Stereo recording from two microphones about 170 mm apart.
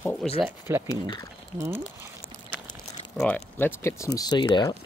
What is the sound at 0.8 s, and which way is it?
Speech, 25° left (ahead or behind).